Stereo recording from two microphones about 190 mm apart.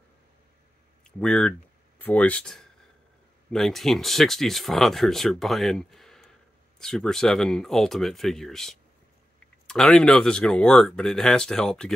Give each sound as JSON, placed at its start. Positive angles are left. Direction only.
{"t": 1.2, "sound": "speech", "side_deg": 5}